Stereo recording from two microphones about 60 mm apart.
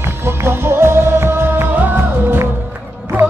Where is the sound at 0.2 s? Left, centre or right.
Right.